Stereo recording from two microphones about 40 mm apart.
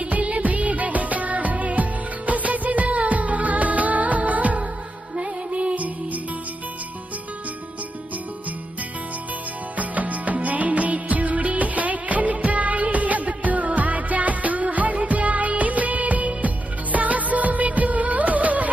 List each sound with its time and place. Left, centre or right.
0.0 s music: right
9.8 s music: right